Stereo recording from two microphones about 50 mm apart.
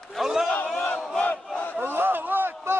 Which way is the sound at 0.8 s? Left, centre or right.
Left.